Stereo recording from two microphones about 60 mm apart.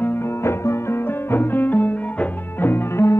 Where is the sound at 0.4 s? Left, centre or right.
Left.